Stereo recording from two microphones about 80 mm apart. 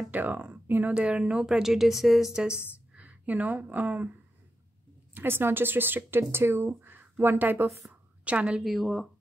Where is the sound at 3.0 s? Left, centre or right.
Centre.